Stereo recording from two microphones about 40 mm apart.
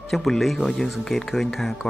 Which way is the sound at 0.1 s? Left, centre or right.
Centre.